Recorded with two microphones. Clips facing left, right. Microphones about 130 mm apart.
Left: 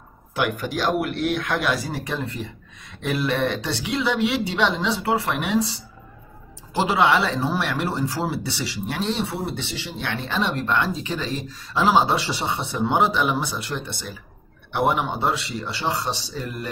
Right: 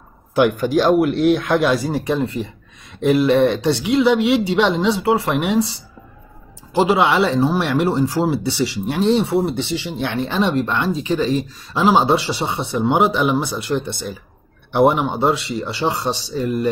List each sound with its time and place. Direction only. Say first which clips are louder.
0.3 s a man's voice: right 9 dB; 30° right (ahead or behind)
6.7 s speech: right 4 dB; 15° right (ahead or behind)
14.7 s a man's voice: right 7 dB; 25° right (ahead or behind)